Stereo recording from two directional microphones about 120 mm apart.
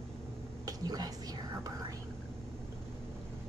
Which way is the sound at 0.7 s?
30° right (ahead or behind).